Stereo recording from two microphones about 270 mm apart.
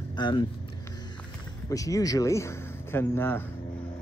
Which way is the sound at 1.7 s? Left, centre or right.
Centre.